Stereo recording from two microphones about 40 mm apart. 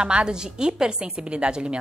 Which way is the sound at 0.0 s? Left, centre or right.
Right.